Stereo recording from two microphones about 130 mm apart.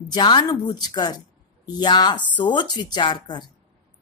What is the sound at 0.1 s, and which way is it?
A woman's voice, 35° left (ahead or behind).